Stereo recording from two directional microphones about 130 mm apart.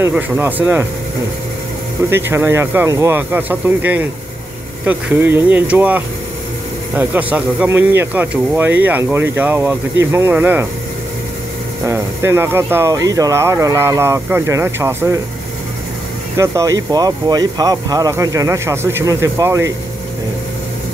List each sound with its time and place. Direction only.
0.0 s speech: 15° right (ahead or behind)
2.0 s speech: 20° right (ahead or behind)
11.8 s speech: 20° right (ahead or behind)
16.3 s speech: 25° right (ahead or behind)